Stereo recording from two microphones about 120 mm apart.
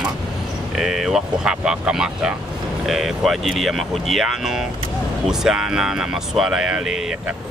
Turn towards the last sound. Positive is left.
turn(degrees=-5)  # may be behind; listen again after turning